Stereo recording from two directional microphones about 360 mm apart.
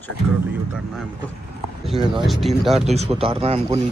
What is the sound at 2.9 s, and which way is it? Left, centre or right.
Speech, centre.